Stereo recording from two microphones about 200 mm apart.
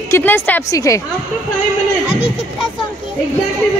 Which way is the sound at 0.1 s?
10° left (ahead or behind).